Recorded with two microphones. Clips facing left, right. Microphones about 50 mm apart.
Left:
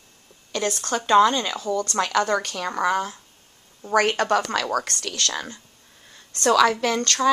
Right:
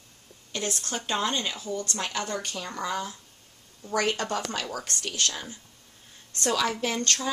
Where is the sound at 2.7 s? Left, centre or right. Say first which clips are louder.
Left 9 dB; left.